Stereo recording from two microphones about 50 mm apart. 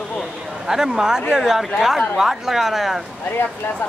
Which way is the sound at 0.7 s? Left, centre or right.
Centre.